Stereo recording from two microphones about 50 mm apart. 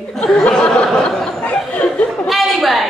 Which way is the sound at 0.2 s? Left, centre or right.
Centre.